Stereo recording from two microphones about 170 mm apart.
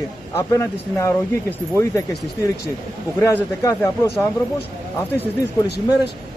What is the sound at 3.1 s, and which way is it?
Speech, 15° left (ahead or behind).